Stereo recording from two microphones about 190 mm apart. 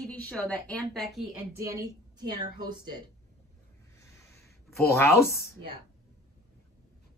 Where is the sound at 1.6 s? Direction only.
15° right (ahead or behind).